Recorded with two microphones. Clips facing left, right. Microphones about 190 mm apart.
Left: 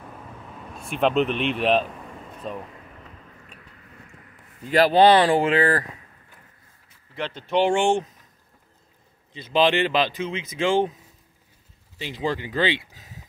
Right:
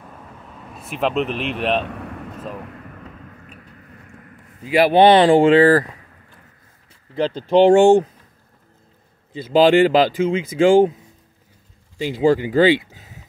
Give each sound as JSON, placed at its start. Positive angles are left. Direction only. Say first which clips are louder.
{"t": 0.7, "sound": "a man's voice", "louder": "even", "side_deg": 0}
{"t": 1.9, "sound": "vehicle", "louder": "right 7 dB", "side_deg": -70}
{"t": 4.6, "sound": "speech", "louder": "right 3 dB", "side_deg": -10}
{"t": 5.0, "sound": "speech", "louder": "right 8 dB", "side_deg": -30}
{"t": 7.2, "sound": "speech", "louder": "right 8 dB", "side_deg": -30}
{"t": 9.3, "sound": "speech", "louder": "right 7 dB", "side_deg": -35}
{"t": 12.1, "sound": "speech", "louder": "right 11 dB", "side_deg": -30}